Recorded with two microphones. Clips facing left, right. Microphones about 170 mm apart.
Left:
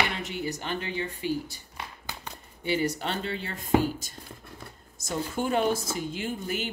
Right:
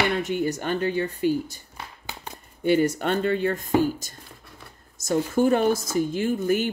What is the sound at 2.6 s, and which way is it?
Speech, 50° right (ahead or behind).